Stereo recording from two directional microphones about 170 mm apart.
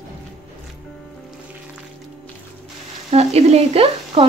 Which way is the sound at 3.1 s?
40° right (ahead or behind).